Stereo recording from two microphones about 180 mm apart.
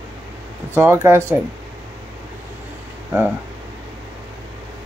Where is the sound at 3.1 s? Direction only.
10° right (ahead or behind).